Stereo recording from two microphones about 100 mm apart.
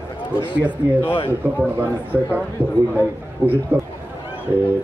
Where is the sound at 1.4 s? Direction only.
15° right (ahead or behind).